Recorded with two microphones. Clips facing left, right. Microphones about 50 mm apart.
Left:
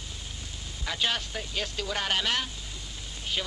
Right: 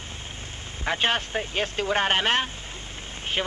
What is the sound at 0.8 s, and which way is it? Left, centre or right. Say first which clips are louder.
Speech: right 6 dB; right.